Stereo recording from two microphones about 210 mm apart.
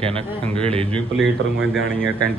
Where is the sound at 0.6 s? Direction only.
25° right (ahead or behind).